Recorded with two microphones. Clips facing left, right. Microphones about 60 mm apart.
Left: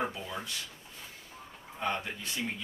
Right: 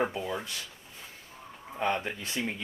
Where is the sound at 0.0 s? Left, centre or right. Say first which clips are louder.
Right 5 dB; centre.